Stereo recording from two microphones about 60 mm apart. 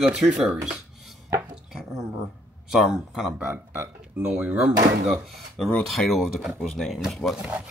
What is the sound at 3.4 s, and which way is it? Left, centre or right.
Speech, right.